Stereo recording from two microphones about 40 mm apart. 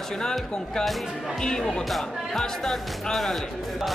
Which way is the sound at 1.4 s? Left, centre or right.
Centre.